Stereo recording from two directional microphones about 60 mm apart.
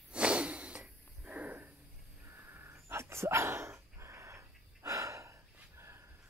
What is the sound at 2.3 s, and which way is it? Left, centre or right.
Dog, right.